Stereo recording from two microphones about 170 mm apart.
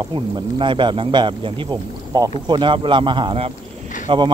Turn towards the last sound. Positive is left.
turn(degrees=-30)  # may be behind; listen again after turning